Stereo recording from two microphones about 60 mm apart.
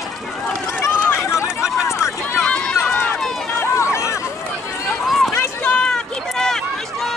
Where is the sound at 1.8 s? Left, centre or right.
Left.